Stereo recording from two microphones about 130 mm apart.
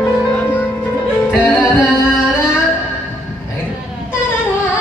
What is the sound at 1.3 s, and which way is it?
Music, 20° left (ahead or behind).